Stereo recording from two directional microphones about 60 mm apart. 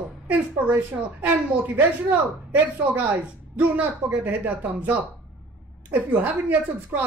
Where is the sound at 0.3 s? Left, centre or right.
Right.